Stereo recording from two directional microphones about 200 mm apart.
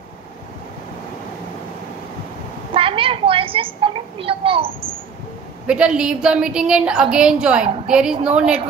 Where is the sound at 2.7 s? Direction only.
25° right (ahead or behind).